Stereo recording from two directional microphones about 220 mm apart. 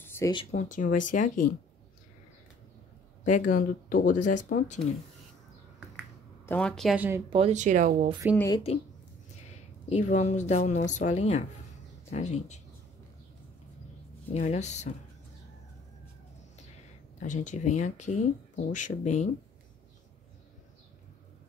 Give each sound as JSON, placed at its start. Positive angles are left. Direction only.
{"t": 0.0, "sound": "a sound", "side_deg": 10}
{"t": 0.5, "sound": "speech", "side_deg": 35}
{"t": 3.3, "sound": "speech", "side_deg": 35}
{"t": 6.4, "sound": "speech", "side_deg": 5}
{"t": 7.2, "sound": "speech", "side_deg": -25}
{"t": 8.4, "sound": "speech", "side_deg": 15}
{"t": 9.5, "sound": "speech", "side_deg": 30}
{"t": 14.3, "sound": "speech", "side_deg": 30}
{"t": 17.2, "sound": "speech", "side_deg": 35}